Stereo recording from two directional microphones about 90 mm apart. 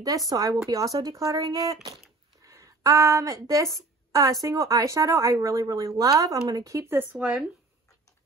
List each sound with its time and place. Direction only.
0.3 s speech: 45° right (ahead or behind); by 7.2 s 25° right (ahead or behind)